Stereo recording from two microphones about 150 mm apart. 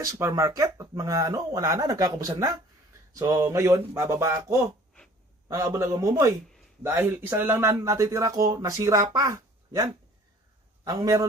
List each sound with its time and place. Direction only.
0.0 s a man's voice: 20° right (ahead or behind)